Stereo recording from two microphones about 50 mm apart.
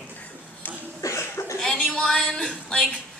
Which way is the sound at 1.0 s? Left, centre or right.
Left.